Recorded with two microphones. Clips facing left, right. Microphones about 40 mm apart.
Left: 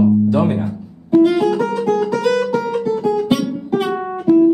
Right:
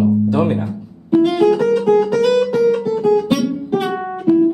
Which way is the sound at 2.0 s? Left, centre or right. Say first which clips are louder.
Right 3 dB; centre.